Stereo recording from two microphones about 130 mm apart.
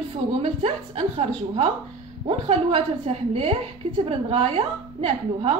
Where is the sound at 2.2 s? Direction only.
50° right (ahead or behind).